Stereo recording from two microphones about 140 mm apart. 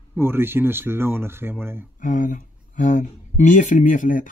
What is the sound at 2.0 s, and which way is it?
Speech, 70° left (ahead or behind).